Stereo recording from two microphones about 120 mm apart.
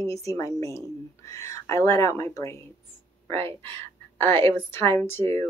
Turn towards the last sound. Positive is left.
turn(degrees=20)  # may be behind; listen again after turning